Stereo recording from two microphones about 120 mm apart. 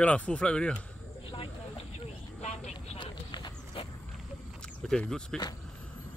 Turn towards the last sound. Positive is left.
turn(degrees=5)  # may be behind; listen again after turning